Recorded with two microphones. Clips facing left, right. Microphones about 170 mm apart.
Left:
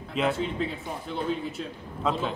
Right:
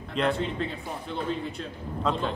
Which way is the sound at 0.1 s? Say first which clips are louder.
Even; 5° left (ahead or behind).